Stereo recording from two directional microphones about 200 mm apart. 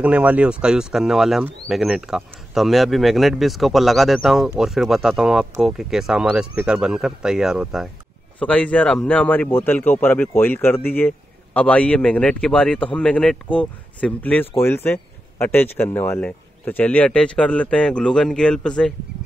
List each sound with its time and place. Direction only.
0.0 s speech: 5° right (ahead or behind)